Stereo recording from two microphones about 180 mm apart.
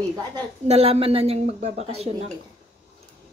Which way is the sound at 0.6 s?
35° right (ahead or behind).